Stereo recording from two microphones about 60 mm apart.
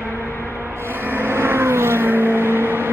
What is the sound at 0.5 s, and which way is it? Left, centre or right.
Vehicle, right.